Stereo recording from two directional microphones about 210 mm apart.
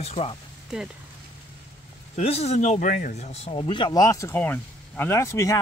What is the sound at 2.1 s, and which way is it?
Speech, 30° left (ahead or behind).